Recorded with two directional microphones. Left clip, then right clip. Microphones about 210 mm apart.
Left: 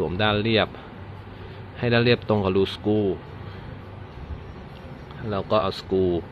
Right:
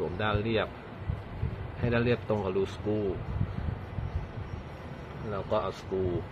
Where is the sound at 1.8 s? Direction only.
45° left (ahead or behind).